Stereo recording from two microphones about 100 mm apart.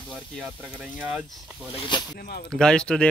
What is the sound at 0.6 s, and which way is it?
Speech, 15° right (ahead or behind).